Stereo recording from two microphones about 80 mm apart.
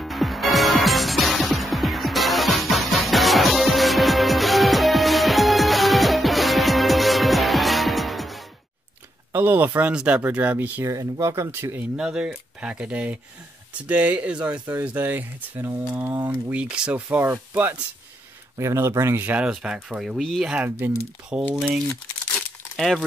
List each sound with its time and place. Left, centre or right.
0.0 s music: centre
9.3 s speech: right
10.9 s speech: right
12.0 s speech: centre; by 16.2 s right
16.5 s speech: centre
18.6 s speech: right
19.2 s speech: centre
20.5 s speech: right
21.3 s speech: centre
22.8 s speech: centre